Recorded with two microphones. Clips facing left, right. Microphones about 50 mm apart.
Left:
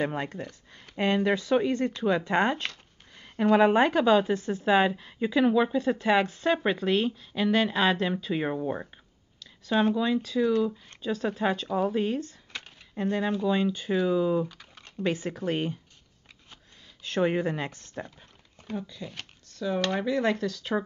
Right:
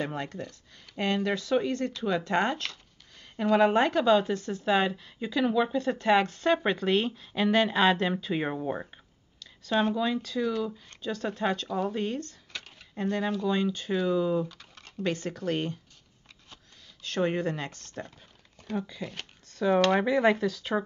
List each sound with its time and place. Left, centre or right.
0.0 s a woman's voice: centre
17.0 s speech: centre
19.5 s speech: right; by 20.8 s centre